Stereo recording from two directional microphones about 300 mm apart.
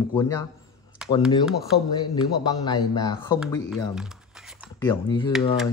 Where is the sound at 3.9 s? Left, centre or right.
Centre.